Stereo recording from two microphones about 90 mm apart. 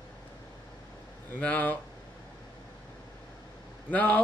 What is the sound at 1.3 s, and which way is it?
Speech, 20° left (ahead or behind).